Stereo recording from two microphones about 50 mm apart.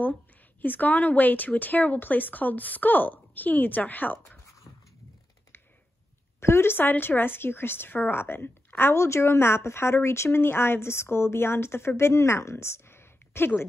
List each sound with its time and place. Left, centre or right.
0.6 s speech: left
6.4 s a woman's voice: left